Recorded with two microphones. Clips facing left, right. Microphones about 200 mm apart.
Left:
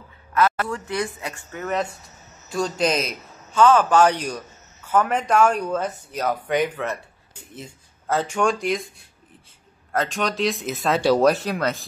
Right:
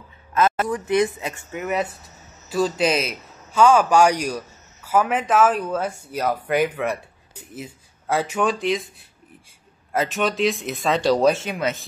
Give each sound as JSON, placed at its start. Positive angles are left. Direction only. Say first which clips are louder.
{"t": 0.3, "sound": "a man's voice", "louder": "right 1 dB", "side_deg": -20}